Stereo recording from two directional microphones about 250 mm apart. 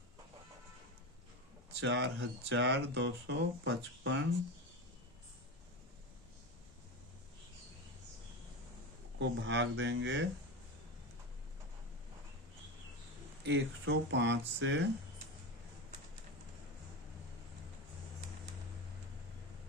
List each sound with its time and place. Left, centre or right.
1.8 s speech: right
9.2 s speech: right
13.4 s speech: right